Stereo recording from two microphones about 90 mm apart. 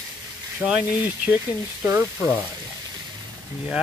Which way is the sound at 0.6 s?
15° right (ahead or behind).